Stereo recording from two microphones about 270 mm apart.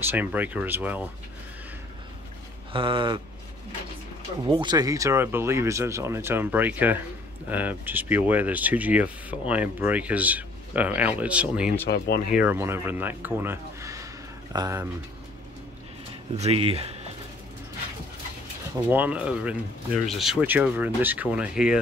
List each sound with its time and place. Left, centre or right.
0.1 s speech: centre
2.7 s speech: centre
4.5 s speech: centre
16.3 s speech: right
18.9 s speech: centre